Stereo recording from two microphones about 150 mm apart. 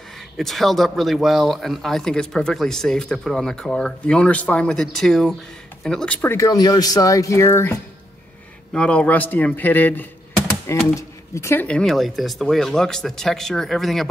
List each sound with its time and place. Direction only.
0.4 s speech: centre (ahead or behind)
6.3 s speech: 25° left (ahead or behind)
8.7 s speech: 10° left (ahead or behind)